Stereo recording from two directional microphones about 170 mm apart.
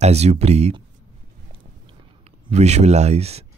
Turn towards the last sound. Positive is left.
turn(degrees=-40)  # may be behind; listen again after turning